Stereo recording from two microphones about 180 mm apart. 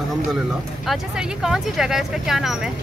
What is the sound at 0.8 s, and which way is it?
Speech, centre (ahead or behind).